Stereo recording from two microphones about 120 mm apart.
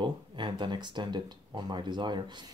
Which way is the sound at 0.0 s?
40° right (ahead or behind).